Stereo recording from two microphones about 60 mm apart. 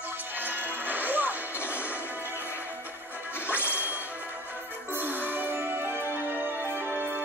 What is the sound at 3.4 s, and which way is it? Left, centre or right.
Whip, left.